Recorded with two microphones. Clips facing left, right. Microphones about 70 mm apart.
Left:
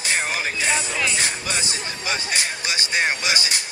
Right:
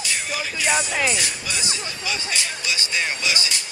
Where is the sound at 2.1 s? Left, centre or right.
Left.